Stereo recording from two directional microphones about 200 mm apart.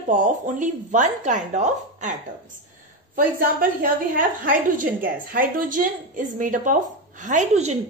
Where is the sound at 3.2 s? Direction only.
45° right (ahead or behind).